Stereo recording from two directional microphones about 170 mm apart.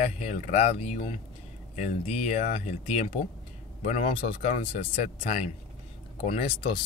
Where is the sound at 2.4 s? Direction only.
45° left (ahead or behind).